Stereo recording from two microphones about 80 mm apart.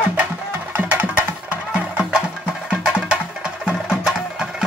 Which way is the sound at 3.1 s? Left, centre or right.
Centre.